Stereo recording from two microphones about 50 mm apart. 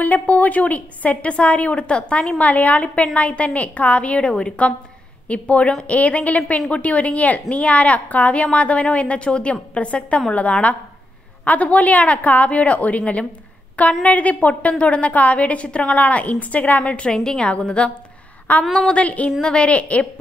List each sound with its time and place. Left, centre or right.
0.0 s a woman's voice: left
17.1 s a woman's voice: centre